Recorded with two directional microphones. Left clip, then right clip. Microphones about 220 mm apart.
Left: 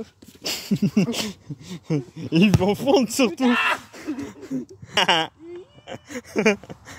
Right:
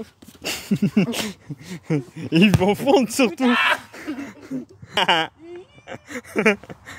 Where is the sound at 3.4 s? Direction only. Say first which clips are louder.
Right 2 dB; 20° right (ahead or behind).